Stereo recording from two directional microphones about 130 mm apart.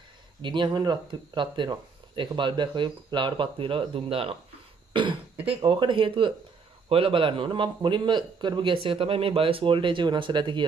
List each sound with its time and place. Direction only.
0.4 s speech: 35° right (ahead or behind)